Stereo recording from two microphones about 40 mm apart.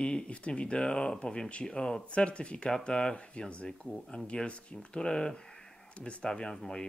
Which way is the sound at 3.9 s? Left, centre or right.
Centre.